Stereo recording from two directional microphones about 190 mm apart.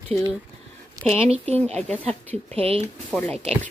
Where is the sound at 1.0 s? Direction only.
45° right (ahead or behind).